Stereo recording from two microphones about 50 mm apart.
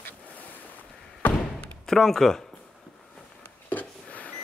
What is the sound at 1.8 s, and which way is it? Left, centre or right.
Speech, centre.